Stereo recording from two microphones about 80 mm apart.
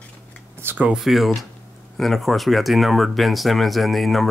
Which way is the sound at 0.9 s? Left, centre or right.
Centre.